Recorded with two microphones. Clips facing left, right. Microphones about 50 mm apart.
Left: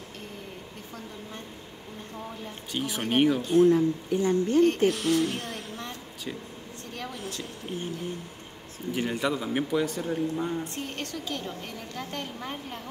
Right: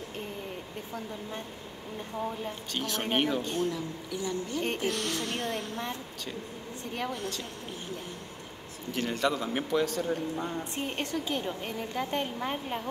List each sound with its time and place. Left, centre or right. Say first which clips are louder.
2.7 s a man's voice: left 3 dB; centre
3.7 s a woman's voice: left 11 dB; left
4.8 s a man's voice: left 7 dB; centre
7.1 s a man's voice: right 2 dB; centre
8.9 s a man's voice: left 1 dB; centre
10.6 s a woman's voice: right 1 dB; right